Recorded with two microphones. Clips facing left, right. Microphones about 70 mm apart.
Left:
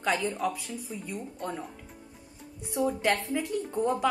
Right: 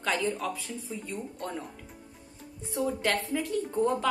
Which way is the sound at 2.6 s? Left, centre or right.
Centre.